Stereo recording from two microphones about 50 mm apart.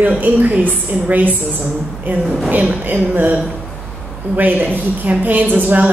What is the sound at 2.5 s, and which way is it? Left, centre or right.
A woman's voice, right.